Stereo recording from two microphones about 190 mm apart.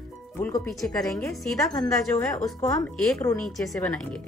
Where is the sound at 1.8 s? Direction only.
5° left (ahead or behind).